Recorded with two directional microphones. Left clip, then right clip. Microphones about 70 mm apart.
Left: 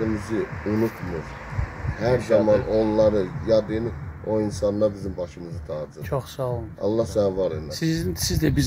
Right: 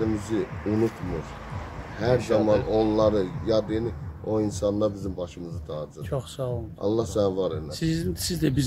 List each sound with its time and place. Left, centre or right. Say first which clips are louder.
0.0 s a sound: left 1 dB; centre
0.7 s speech: even; centre
2.0 s speech: left 3 dB; centre
6.1 s speech: left 4 dB; centre
6.8 s speech: left 2 dB; right
7.7 s speech: left 2 dB; centre